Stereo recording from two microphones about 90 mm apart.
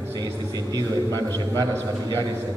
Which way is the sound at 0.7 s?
45° right (ahead or behind).